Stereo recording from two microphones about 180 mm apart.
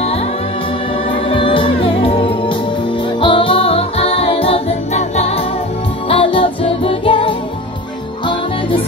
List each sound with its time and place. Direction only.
1.3 s music: 30° left (ahead or behind)